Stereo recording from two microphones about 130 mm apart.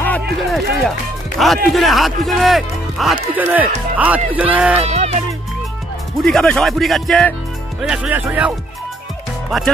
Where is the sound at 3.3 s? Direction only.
15° right (ahead or behind).